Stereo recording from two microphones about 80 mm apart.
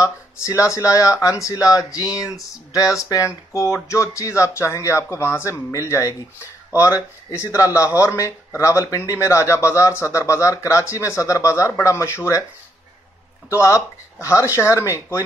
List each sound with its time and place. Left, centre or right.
0.0 s speech: left
13.5 s speech: left